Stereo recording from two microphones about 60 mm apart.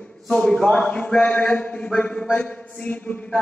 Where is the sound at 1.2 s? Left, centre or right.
Left.